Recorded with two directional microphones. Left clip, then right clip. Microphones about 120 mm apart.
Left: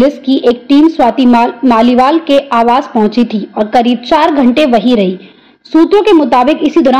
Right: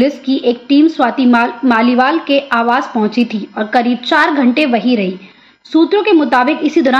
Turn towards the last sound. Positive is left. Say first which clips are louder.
# left 4 dB
turn(degrees=25)  # may be behind; listen again after turning